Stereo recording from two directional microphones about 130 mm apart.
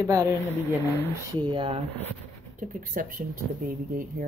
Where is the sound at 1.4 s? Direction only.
40° right (ahead or behind).